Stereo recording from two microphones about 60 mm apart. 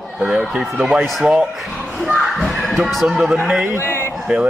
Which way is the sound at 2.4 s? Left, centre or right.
Centre.